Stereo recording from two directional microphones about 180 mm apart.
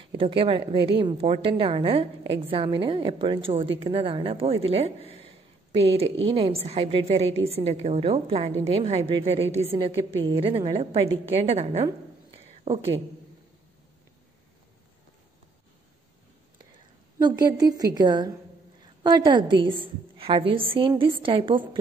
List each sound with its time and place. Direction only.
0.2 s a woman's voice: 30° right (ahead or behind)
17.2 s a woman's voice: 20° right (ahead or behind)